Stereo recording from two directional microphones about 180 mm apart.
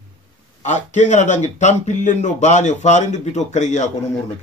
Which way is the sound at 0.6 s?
40° left (ahead or behind).